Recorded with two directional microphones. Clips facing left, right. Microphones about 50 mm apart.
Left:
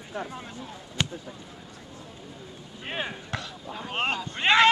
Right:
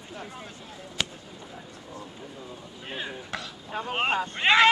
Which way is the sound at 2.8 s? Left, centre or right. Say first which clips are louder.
Left 4 dB; left.